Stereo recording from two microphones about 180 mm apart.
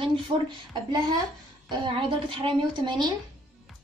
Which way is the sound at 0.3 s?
35° right (ahead or behind).